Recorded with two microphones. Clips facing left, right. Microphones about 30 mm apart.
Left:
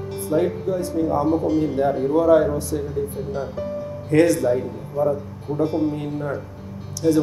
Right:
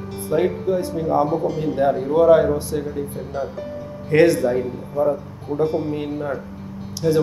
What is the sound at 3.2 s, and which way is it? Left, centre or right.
Speech, centre.